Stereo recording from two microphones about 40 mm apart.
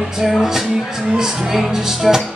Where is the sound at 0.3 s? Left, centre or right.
Centre.